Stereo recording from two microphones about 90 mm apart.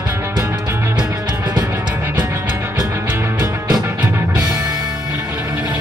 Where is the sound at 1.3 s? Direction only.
50° right (ahead or behind).